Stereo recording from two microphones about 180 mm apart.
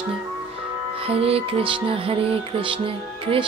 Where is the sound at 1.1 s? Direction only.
35° right (ahead or behind).